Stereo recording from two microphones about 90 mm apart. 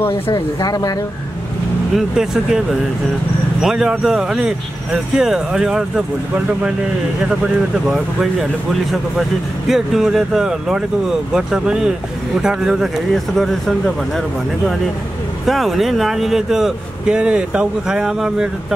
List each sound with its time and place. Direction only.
0.3 s speech: 45° left (ahead or behind)
2.0 s speech: 5° right (ahead or behind)
7.8 s speech: 5° right (ahead or behind)
9.7 s speech: 5° right (ahead or behind)
15.4 s speech: centre (ahead or behind)